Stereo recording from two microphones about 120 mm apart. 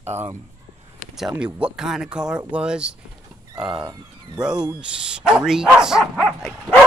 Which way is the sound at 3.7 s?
40° right (ahead or behind).